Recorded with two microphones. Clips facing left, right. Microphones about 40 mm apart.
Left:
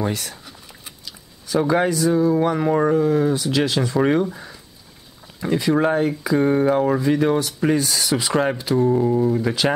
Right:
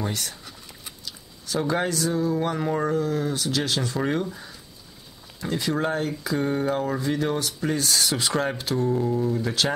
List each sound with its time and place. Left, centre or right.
0.0 s a sound: centre
2.4 s speech: centre
2.7 s speech: left; by 8.4 s centre
8.7 s speech: centre